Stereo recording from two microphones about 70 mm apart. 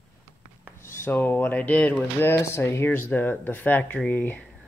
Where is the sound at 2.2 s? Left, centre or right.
Left.